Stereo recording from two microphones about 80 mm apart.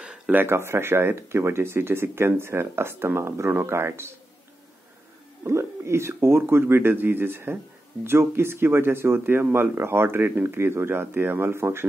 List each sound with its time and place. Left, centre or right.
0.0 s speech: centre
5.4 s speech: right